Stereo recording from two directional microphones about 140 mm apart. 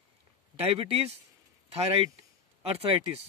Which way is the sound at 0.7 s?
45° right (ahead or behind).